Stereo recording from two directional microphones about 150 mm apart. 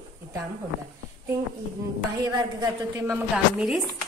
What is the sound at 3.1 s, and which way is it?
Speech, 15° right (ahead or behind).